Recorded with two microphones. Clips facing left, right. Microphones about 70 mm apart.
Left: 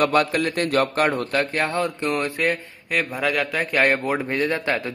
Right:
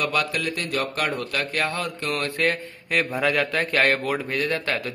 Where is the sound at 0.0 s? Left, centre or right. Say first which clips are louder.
Left 5 dB; left; by 2.5 s centre.